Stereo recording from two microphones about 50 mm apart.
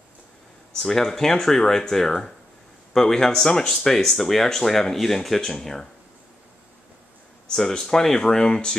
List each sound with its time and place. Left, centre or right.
0.7 s speech: centre
7.5 s speech: centre